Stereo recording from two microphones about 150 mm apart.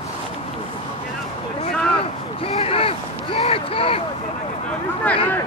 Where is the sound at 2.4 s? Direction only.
40° left (ahead or behind).